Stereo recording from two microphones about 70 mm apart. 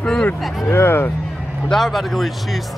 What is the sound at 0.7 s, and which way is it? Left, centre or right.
Speech, left.